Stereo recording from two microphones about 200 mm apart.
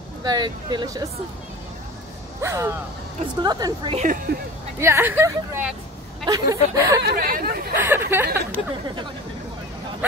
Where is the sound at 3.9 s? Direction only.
40° right (ahead or behind).